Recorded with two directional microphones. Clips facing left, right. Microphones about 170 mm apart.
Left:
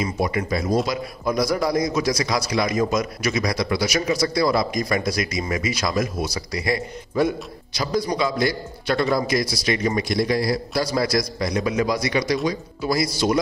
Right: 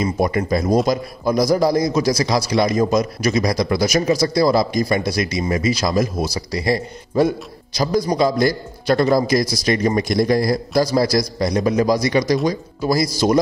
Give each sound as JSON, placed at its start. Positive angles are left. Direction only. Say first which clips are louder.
{"t": 0.0, "sound": "a man's voice", "louder": "right 4 dB", "side_deg": -40}